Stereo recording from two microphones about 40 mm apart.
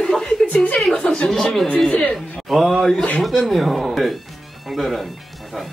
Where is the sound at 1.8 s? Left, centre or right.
Left.